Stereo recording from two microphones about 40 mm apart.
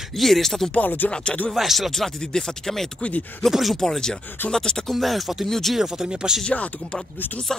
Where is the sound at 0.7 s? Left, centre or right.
Left.